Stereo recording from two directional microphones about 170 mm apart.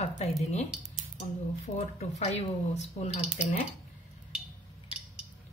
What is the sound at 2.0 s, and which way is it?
Speech, 40° left (ahead or behind).